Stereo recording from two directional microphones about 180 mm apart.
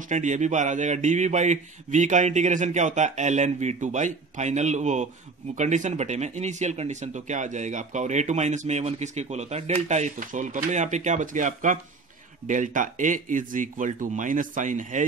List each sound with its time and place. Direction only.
0.1 s speech: 40° right (ahead or behind)